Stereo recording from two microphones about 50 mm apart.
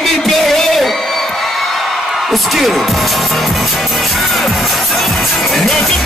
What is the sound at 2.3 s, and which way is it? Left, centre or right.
Speech, centre.